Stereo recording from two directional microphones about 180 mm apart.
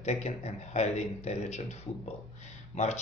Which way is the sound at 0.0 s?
40° left (ahead or behind).